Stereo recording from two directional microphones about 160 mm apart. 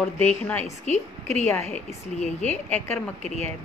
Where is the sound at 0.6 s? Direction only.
45° left (ahead or behind).